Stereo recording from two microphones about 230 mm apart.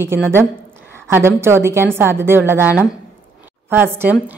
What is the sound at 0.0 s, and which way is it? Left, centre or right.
A woman's voice, centre.